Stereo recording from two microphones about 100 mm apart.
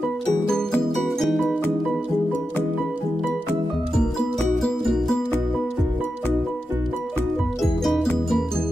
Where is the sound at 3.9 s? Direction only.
5° left (ahead or behind).